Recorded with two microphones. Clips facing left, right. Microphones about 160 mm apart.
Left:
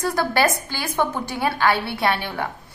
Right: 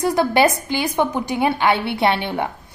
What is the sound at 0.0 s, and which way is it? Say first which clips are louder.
A woman's voice: right 4 dB; 20° right (ahead or behind).